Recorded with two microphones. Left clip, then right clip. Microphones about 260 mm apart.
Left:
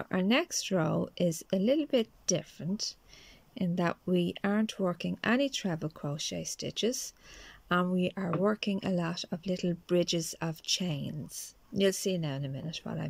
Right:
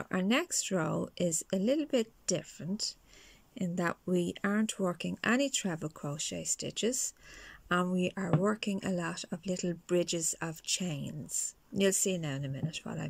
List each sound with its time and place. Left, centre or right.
0.0 s speech: centre